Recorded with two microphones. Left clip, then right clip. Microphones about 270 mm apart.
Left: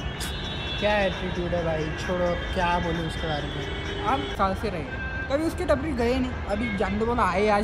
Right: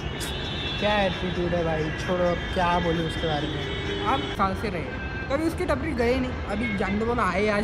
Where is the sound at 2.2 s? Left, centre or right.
Centre.